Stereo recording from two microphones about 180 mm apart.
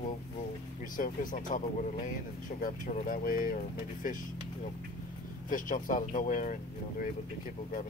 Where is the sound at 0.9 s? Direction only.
50° left (ahead or behind).